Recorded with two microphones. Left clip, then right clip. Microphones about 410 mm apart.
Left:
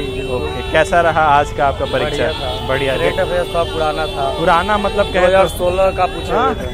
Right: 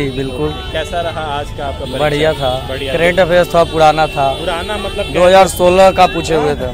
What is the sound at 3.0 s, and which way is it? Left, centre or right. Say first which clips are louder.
Speech: right 6 dB; right.